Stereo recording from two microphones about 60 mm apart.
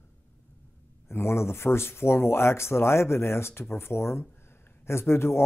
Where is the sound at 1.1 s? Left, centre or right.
Left.